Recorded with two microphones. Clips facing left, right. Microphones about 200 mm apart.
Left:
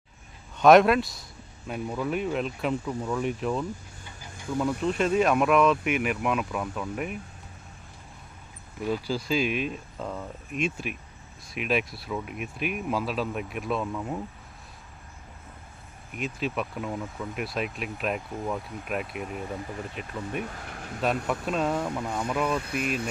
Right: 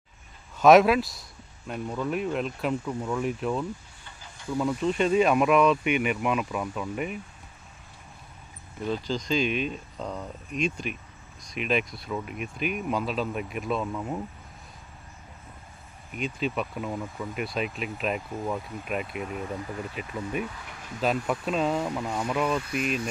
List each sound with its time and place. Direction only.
0.6 s speech: centre (ahead or behind)
8.8 s speech: 10° left (ahead or behind)
16.1 s speech: centre (ahead or behind)
20.4 s speech: 50° left (ahead or behind)
21.3 s speech: centre (ahead or behind)